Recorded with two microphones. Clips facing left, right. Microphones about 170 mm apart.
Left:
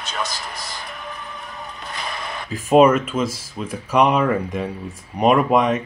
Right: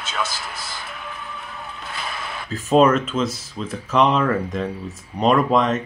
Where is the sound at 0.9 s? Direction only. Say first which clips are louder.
Left 1 dB; 40° left (ahead or behind).